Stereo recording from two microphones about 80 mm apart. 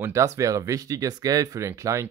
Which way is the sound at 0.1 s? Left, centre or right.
Right.